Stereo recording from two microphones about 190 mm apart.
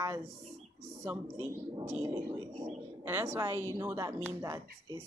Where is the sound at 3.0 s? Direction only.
15° right (ahead or behind).